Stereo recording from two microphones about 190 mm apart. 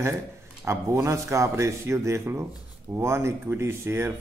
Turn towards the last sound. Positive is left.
turn(degrees=-15)  # may be behind; listen again after turning